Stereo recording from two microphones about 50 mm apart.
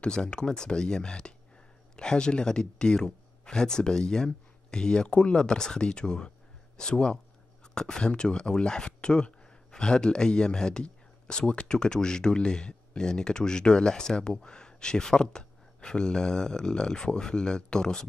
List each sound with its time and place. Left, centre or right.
0.0 s speech: centre